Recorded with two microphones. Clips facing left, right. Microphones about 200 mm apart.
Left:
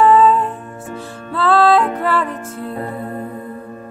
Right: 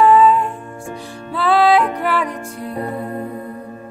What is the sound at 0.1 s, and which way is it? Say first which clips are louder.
Music: even; 10° right (ahead or behind).